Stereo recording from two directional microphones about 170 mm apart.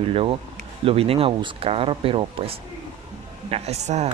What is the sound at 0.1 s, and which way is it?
Speech, 35° right (ahead or behind).